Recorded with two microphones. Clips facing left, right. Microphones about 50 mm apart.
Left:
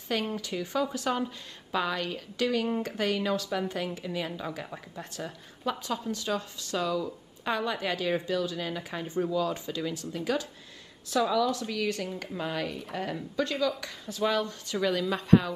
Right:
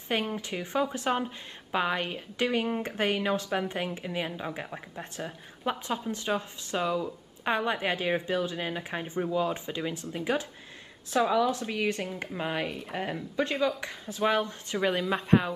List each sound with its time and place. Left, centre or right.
0.1 s a woman's voice: right